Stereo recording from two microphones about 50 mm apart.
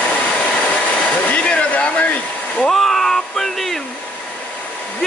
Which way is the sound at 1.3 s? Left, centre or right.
Left.